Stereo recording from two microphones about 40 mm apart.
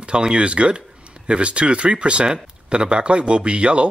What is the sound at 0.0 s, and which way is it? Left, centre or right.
Speech, right.